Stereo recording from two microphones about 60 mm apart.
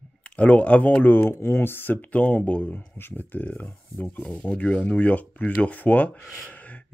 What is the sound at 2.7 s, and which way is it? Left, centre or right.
Speech, left.